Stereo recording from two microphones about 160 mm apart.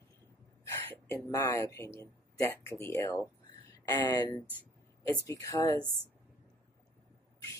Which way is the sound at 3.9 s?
25° left (ahead or behind).